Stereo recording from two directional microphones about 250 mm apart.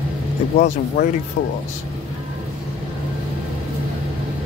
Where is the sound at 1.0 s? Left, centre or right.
Left.